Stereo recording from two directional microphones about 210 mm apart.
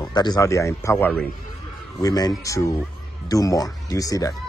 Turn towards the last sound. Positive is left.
turn(degrees=15)  # may be behind; listen again after turning